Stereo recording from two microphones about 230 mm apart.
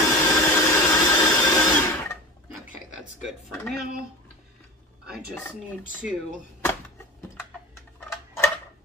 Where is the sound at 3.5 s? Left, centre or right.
Centre.